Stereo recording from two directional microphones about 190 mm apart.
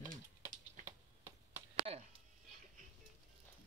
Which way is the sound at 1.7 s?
30° right (ahead or behind).